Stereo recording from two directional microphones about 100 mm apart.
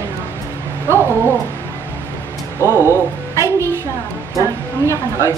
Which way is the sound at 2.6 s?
25° right (ahead or behind).